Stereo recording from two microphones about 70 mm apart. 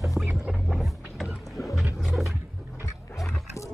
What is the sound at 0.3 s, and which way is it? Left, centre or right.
Boat, centre.